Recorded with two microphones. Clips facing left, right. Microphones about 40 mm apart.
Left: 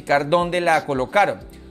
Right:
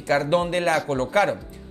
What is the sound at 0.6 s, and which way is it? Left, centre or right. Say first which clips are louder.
Speech: left 3 dB; centre.